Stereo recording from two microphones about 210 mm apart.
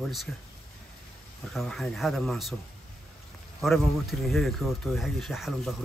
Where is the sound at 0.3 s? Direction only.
5° left (ahead or behind).